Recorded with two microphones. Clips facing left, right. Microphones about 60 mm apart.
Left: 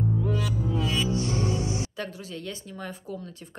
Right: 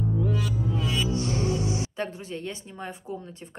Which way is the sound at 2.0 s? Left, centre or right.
Right.